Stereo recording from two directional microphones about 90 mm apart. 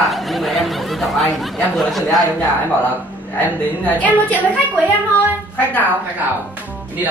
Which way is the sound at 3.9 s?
15° left (ahead or behind).